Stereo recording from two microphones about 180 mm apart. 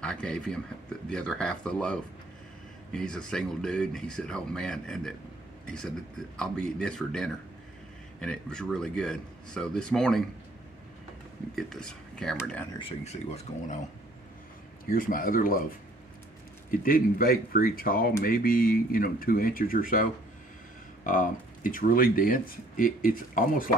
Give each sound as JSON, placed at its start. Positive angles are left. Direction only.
{"t": 0.0, "sound": "speech", "side_deg": 5}
{"t": 11.5, "sound": "speech", "side_deg": 5}
{"t": 12.7, "sound": "speech", "side_deg": 35}
{"t": 14.9, "sound": "speech", "side_deg": 50}
{"t": 16.8, "sound": "speech", "side_deg": 55}